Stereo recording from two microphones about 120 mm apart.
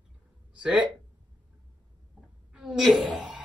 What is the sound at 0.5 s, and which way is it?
Speech, 10° right (ahead or behind).